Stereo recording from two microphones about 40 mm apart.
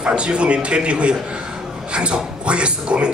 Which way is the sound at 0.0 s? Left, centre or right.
Right.